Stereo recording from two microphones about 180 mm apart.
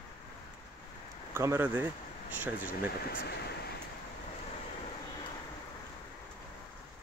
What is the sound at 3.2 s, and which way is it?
Speech, 60° left (ahead or behind).